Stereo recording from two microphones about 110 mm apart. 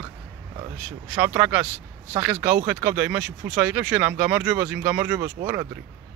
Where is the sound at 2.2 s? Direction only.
15° right (ahead or behind).